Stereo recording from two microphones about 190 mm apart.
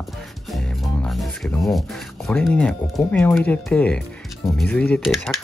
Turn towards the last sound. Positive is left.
turn(degrees=0)  # may be behind; listen again after turning